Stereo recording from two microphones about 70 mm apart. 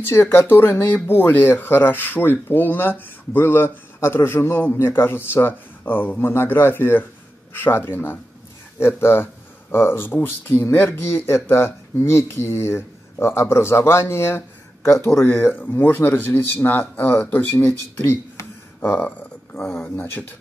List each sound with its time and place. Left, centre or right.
0.0 s speech: left
19.5 s speech: left